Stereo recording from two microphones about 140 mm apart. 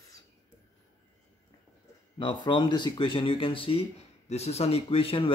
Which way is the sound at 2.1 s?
30° left (ahead or behind).